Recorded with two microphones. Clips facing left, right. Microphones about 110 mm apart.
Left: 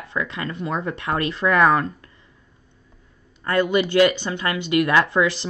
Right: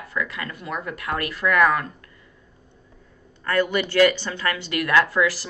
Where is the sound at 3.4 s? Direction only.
20° left (ahead or behind).